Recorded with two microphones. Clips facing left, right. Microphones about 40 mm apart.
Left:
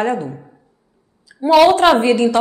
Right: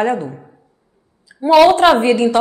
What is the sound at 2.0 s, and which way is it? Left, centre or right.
Speech, right.